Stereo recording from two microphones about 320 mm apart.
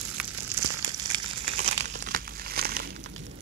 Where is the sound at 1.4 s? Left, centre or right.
Right.